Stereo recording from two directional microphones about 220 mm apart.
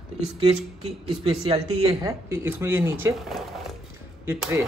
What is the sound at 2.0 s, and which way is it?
Speech, 10° right (ahead or behind).